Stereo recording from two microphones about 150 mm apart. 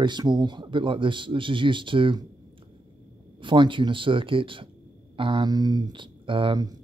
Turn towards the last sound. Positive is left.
turn(degrees=-35)  # may be behind; listen again after turning